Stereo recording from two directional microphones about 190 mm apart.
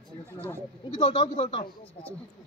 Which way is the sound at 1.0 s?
25° left (ahead or behind).